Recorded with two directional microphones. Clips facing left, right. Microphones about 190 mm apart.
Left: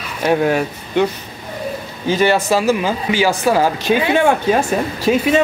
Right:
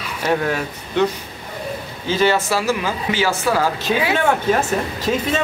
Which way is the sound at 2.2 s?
15° left (ahead or behind).